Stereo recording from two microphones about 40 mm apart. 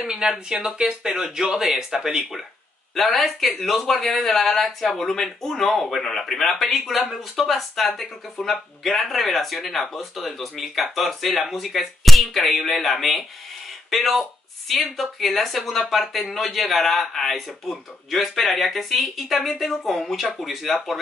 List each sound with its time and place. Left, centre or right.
0.0 s speech: centre
2.9 s speech: centre